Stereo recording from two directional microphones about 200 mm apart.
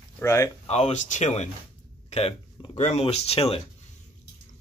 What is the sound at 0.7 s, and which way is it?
Speech, 35° left (ahead or behind).